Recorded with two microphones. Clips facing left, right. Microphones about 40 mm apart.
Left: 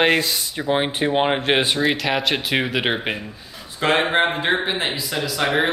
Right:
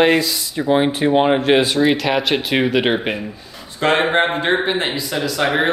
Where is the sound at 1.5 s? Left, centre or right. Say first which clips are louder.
Right 4 dB; left.